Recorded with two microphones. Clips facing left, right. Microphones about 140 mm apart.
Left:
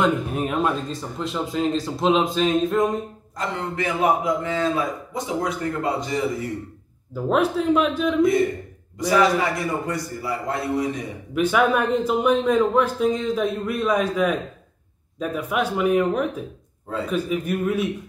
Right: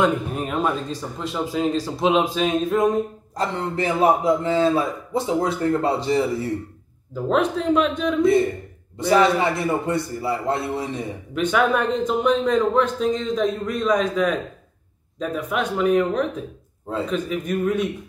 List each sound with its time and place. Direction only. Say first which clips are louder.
0.0 s speech: even; centre (ahead or behind)
3.3 s a man's voice: right 3 dB; 30° right (ahead or behind)
7.2 s speech: even; 5° left (ahead or behind)
9.1 s a man's voice: right 2 dB; 25° right (ahead or behind)
11.3 s a man's voice: left 1 dB; 5° left (ahead or behind)